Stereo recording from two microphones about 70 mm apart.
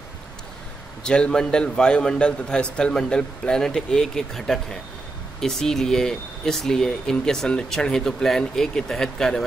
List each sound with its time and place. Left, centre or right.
1.0 s speech: centre